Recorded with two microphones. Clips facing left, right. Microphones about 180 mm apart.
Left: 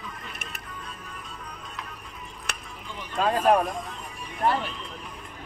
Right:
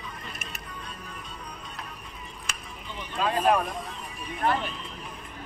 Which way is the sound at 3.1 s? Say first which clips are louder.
Left 2 dB; 45° left (ahead or behind).